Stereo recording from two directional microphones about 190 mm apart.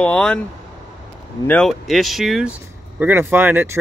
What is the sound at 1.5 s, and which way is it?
Speech, 5° left (ahead or behind).